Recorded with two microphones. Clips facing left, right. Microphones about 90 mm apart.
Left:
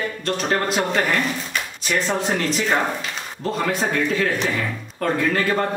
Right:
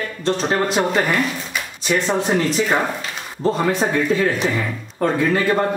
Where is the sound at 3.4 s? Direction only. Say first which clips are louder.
Right 6 dB; 30° right (ahead or behind).